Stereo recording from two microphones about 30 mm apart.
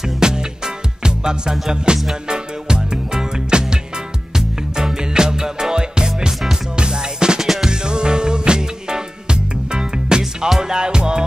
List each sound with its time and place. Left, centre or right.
0.0 s music: right